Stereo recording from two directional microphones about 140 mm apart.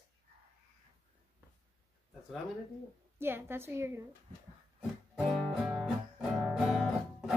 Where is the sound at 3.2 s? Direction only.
15° right (ahead or behind).